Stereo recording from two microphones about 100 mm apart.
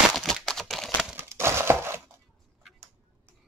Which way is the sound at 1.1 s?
25° right (ahead or behind).